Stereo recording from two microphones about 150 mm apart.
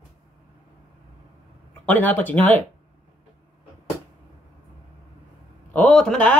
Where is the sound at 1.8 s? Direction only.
10° left (ahead or behind).